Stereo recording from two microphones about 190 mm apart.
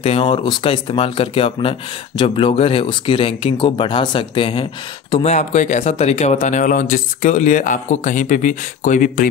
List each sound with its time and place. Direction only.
0.0 s speech: 30° left (ahead or behind); by 9.3 s 45° left (ahead or behind)